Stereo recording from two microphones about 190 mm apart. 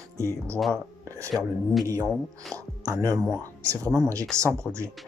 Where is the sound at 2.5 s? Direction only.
15° right (ahead or behind).